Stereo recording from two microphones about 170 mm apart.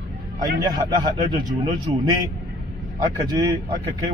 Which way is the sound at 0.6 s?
25° right (ahead or behind).